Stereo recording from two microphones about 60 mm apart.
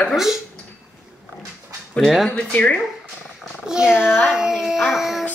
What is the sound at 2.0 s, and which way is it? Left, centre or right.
Speech, centre.